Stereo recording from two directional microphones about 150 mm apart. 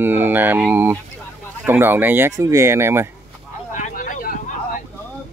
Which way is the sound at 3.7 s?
60° left (ahead or behind).